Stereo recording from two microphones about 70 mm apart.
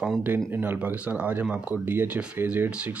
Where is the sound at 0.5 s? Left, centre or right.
Right.